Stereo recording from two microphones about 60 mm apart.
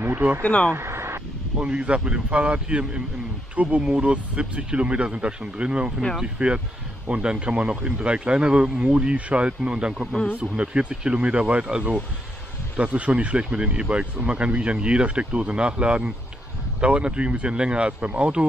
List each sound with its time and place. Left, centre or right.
0.4 s speech: left
0.7 s vehicle: right
1.6 s speech: centre